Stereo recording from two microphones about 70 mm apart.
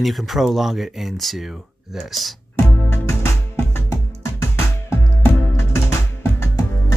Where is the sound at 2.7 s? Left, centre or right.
Left.